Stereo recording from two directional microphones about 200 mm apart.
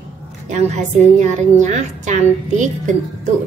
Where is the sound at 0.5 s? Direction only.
35° right (ahead or behind).